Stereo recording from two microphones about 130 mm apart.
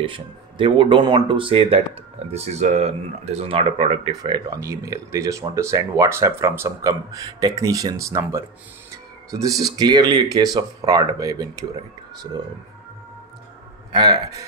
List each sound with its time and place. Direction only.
0.0 s speech: 40° right (ahead or behind)
2.3 s speech: 60° right (ahead or behind)
4.2 s speech: 30° right (ahead or behind)
13.9 s speech: 30° right (ahead or behind)